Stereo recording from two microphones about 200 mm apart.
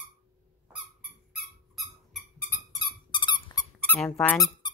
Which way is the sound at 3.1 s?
25° left (ahead or behind).